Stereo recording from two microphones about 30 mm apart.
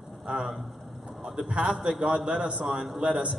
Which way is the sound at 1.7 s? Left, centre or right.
Centre.